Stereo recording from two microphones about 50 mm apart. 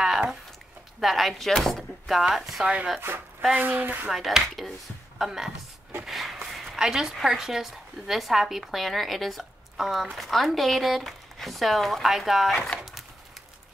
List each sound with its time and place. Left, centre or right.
0.0 s a sound: centre
1.0 s a woman's voice: centre
3.0 s speech: right
3.5 s speech: right
4.1 s a woman's voice: centre
6.0 s a sound: centre
6.8 s a woman's voice: centre